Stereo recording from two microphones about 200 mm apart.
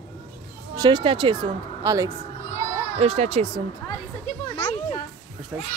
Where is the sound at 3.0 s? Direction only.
30° right (ahead or behind).